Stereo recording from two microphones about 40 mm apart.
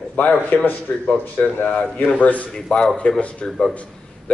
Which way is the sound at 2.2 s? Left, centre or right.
Left.